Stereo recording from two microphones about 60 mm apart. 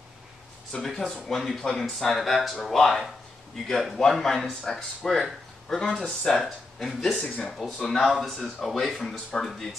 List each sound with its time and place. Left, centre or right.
0.8 s speech: centre
7.2 s speech: centre
7.5 s speech: centre